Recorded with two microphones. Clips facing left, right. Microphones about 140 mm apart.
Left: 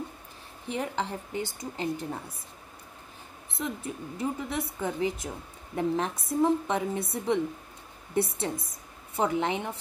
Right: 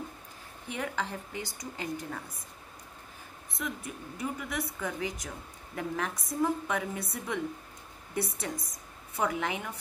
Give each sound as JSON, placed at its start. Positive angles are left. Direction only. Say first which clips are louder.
{"t": 0.7, "sound": "a woman's voice", "louder": "left 3 dB", "side_deg": 25}
{"t": 3.5, "sound": "a woman's voice", "louder": "left 4 dB", "side_deg": 30}
{"t": 8.4, "sound": "a woman's voice", "louder": "left 4 dB", "side_deg": 25}